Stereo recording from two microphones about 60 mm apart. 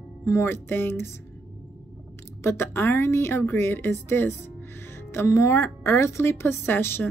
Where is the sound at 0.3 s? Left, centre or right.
Left.